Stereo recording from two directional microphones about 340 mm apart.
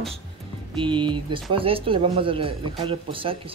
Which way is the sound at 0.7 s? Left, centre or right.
Centre.